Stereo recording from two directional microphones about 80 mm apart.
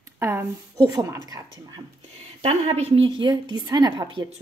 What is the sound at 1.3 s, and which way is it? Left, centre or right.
Speech, right.